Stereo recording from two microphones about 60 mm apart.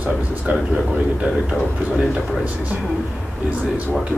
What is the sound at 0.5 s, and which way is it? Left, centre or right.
Speech, right.